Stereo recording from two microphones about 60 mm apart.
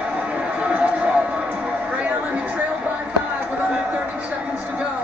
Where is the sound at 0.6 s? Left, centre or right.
Right.